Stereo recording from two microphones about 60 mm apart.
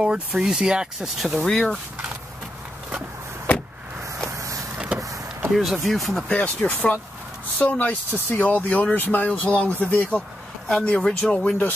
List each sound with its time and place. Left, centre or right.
0.0 s speech: centre
1.4 s speech: centre
4.2 s vehicle: right
4.7 s power windows: centre
5.0 s power windows: right
5.5 s speech: centre
6.2 s speech: left